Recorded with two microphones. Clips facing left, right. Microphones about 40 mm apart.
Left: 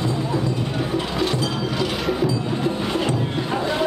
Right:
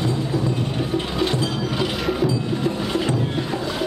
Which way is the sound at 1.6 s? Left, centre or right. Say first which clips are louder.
Even; centre.